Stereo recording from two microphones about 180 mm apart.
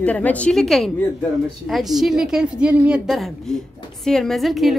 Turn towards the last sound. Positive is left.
turn(degrees=0)  # may be behind; listen again after turning